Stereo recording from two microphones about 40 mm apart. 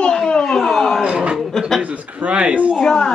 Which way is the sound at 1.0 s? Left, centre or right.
Right.